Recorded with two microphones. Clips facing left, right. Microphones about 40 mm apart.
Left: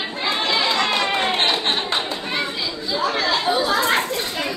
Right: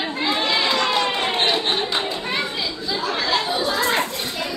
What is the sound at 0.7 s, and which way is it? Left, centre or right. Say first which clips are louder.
Music: even; left.